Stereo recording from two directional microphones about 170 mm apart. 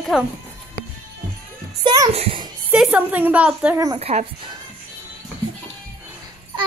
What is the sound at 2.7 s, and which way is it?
Speech, 5° right (ahead or behind).